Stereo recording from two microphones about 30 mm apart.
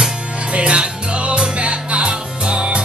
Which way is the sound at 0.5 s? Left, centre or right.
Right.